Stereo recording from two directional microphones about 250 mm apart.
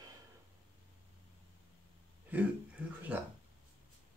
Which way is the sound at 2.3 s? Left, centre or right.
Centre.